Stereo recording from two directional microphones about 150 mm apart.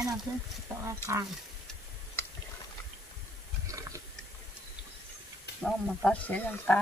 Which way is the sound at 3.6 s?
20° right (ahead or behind).